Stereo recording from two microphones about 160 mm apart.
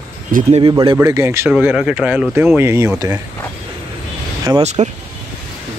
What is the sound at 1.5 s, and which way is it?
Speech, 5° right (ahead or behind).